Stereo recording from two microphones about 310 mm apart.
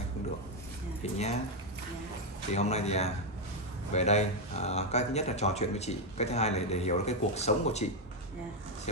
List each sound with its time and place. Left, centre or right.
1.1 s speech: left
2.5 s speech: left